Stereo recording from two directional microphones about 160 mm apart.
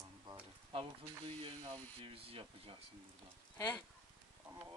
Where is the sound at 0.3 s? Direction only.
35° right (ahead or behind).